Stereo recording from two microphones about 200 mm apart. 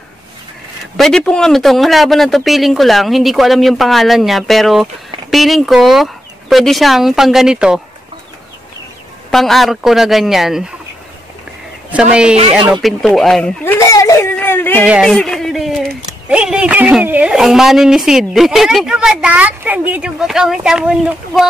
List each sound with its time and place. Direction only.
0.9 s speech: centre (ahead or behind)
9.3 s speech: centre (ahead or behind)
11.9 s speech: 5° right (ahead or behind)
13.8 s a sound: 15° left (ahead or behind)
14.8 s speech: 5° right (ahead or behind)